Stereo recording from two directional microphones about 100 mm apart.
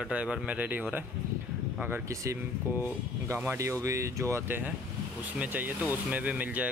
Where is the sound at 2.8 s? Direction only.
20° right (ahead or behind).